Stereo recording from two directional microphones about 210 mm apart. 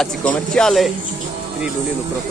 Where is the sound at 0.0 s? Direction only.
5° left (ahead or behind).